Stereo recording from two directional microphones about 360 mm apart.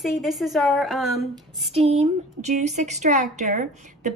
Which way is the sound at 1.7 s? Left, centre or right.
Centre.